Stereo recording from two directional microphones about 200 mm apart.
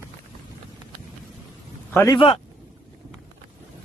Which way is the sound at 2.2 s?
30° left (ahead or behind).